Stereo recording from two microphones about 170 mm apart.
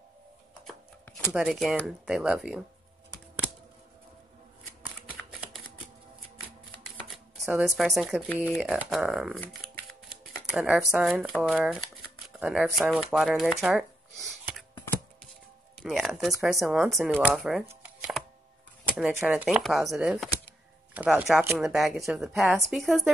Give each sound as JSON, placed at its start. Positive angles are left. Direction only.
{"t": 1.0, "sound": "a sound", "side_deg": 10}
{"t": 1.3, "sound": "speech", "side_deg": 0}
{"t": 7.3, "sound": "speech", "side_deg": 0}
{"t": 10.0, "sound": "shuffling cards", "side_deg": -5}
{"t": 11.3, "sound": "speech", "side_deg": 0}
{"t": 15.8, "sound": "speech", "side_deg": 0}
{"t": 17.6, "sound": "shuffling cards", "side_deg": -5}
{"t": 18.9, "sound": "speech", "side_deg": -10}